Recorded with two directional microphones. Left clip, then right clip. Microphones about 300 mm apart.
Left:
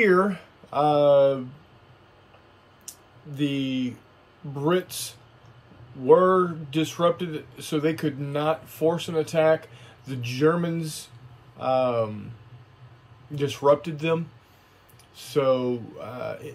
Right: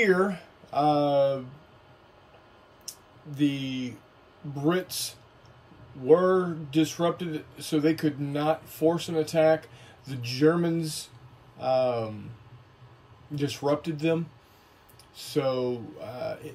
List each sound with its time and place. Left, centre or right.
0.0 s speech: centre
2.9 s a sound: centre
3.3 s speech: centre
7.2 s speech: left
7.6 s speech: centre
13.4 s speech: centre
15.1 s speech: centre